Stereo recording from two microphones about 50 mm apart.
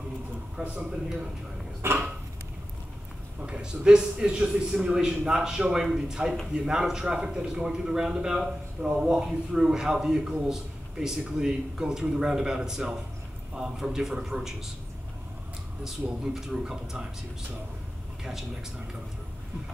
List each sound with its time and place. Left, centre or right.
0.6 s a man's voice: centre
1.8 s a sound: right
3.4 s a man's voice: centre
16.3 s a man's voice: centre
18.2 s a man's voice: centre